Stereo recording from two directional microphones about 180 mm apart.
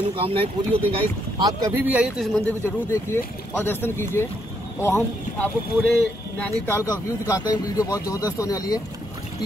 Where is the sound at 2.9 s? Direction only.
15° left (ahead or behind).